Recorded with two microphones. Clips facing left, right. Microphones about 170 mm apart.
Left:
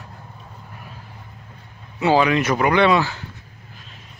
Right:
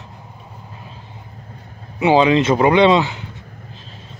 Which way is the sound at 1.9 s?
20° right (ahead or behind).